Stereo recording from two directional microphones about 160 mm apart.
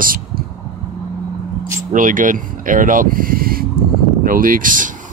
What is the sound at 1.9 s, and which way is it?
Speech, 55° right (ahead or behind).